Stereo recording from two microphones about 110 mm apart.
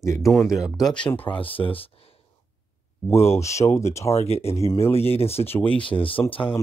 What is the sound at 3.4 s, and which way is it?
Speech, 25° left (ahead or behind).